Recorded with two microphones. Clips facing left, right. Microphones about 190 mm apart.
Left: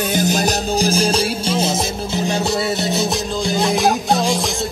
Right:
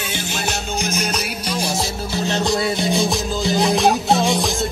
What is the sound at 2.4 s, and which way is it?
Music, 5° left (ahead or behind).